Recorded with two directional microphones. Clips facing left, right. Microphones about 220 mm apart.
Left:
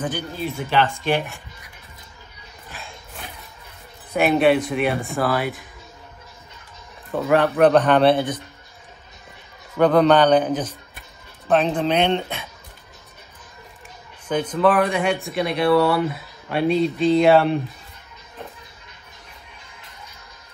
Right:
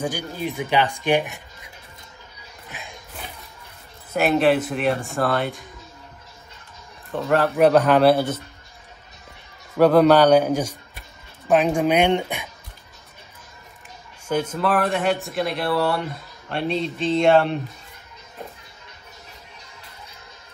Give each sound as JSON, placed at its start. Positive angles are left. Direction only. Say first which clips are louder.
{"t": 0.0, "sound": "speech", "louder": "even", "side_deg": -15}
{"t": 2.7, "sound": "a sound", "louder": "even", "side_deg": -20}
{"t": 4.1, "sound": "speech", "louder": "left 1 dB", "side_deg": 0}
{"t": 7.2, "sound": "speech", "louder": "left 1 dB", "side_deg": 0}
{"t": 9.8, "sound": "speech", "louder": "right 1 dB", "side_deg": -5}
{"t": 14.3, "sound": "speech", "louder": "left 3 dB", "side_deg": -5}